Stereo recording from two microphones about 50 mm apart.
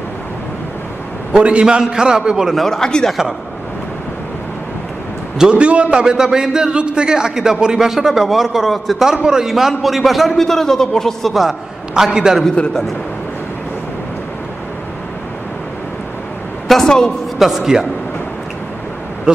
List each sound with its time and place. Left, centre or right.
1.4 s a man's voice: right
2.5 s speech: centre
5.4 s a man's voice: right; by 11.3 s centre
11.3 s a man's voice: centre
16.6 s a man's voice: centre
17.4 s a man's voice: centre